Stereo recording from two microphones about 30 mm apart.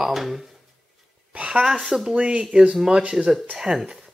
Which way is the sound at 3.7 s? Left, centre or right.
Right.